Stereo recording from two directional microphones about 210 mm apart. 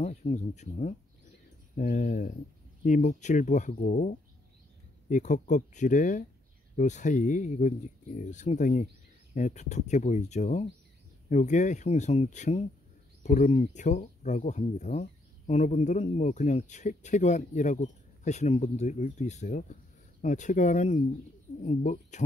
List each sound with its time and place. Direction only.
0.0 s speech: 30° left (ahead or behind)